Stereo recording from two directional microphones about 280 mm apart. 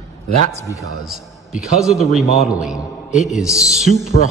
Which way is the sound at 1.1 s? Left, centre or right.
Centre.